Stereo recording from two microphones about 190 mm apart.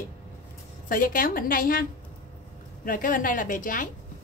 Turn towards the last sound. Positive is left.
turn(degrees=45)  # may be behind; listen again after turning